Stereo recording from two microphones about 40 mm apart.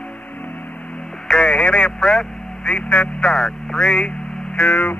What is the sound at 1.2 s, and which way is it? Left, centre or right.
Radio, centre.